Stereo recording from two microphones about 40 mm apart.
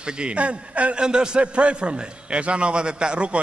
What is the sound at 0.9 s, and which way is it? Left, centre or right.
A man's voice, right.